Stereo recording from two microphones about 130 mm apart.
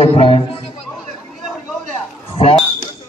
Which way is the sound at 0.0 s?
45° left (ahead or behind).